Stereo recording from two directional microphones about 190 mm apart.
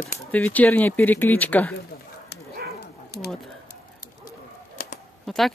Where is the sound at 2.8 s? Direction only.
60° left (ahead or behind).